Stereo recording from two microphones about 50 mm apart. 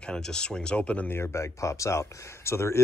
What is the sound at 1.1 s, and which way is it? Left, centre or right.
Speech, left.